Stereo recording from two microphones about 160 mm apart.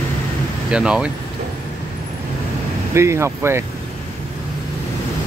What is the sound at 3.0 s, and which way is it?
Speech, 15° right (ahead or behind).